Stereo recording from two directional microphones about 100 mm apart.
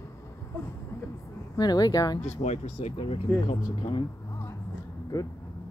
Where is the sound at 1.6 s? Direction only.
40° left (ahead or behind).